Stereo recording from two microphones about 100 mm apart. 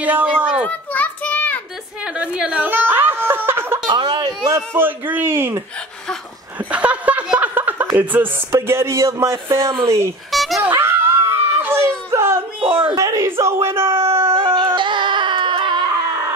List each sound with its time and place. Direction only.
0.0 s a child's voice: 15° right (ahead or behind)
0.7 s children playing: 15° left (ahead or behind)
2.0 s speech: 10° right (ahead or behind)
3.9 s speech: 45° right (ahead or behind)
4.6 s speech: 20° right (ahead or behind)
6.6 s chuckle: 15° right (ahead or behind)
8.5 s speech: 25° right (ahead or behind)
10.3 s dog: centre (ahead or behind)
10.8 s a sound: 25° right (ahead or behind)
12.9 s speech: 35° right (ahead or behind)
14.3 s a sound: 60° right (ahead or behind)